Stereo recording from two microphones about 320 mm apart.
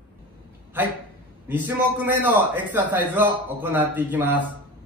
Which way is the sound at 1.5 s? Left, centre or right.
Centre.